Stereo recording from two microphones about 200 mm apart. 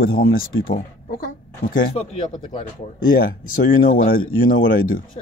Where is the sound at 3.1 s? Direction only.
45° left (ahead or behind).